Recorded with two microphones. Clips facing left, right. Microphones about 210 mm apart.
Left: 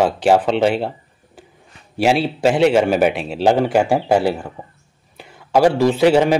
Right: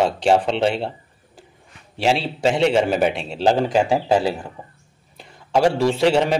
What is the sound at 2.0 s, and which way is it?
A man's voice, 5° left (ahead or behind).